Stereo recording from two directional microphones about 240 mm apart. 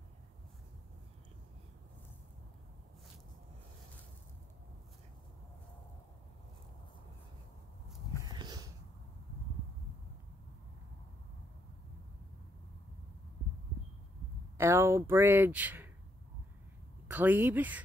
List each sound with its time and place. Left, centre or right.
8.3 s a sound: centre
14.6 s speech: centre
17.1 s speech: centre